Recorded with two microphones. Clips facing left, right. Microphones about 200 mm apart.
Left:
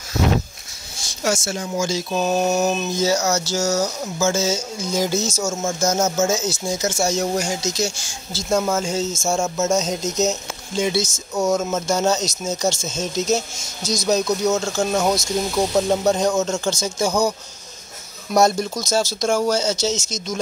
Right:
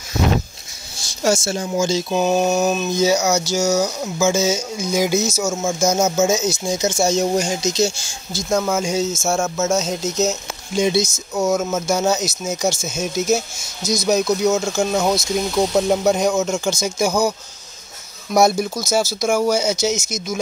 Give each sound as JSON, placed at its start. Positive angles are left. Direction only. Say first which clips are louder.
{"t": 1.2, "sound": "speech", "louder": "right 4 dB", "side_deg": -30}
{"t": 2.2, "sound": "speech", "louder": "right 1 dB", "side_deg": 0}
{"t": 3.0, "sound": "speech", "louder": "right 4 dB", "side_deg": -15}
{"t": 8.3, "sound": "speech", "louder": "right 1 dB", "side_deg": 5}
{"t": 8.7, "sound": "speech", "louder": "right 2 dB", "side_deg": -10}
{"t": 10.7, "sound": "speech", "louder": "right 3 dB", "side_deg": -15}
{"t": 18.3, "sound": "speech", "louder": "right 1 dB", "side_deg": -10}